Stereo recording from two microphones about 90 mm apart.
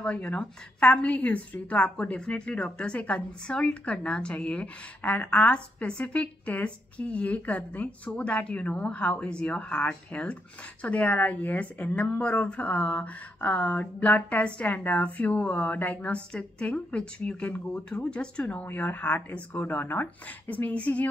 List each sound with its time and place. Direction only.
0.0 s speech: 10° left (ahead or behind)